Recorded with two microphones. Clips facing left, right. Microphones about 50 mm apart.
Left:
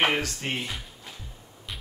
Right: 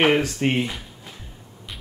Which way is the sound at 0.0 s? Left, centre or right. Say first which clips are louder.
Right 6 dB; centre.